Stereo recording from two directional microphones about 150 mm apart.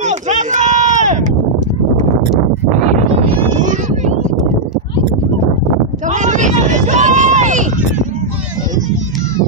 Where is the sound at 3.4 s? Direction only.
55° right (ahead or behind).